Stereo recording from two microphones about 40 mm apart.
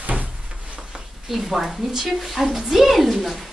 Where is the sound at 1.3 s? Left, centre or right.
Centre.